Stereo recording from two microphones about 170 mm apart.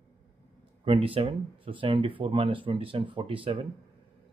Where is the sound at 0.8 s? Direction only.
30° right (ahead or behind).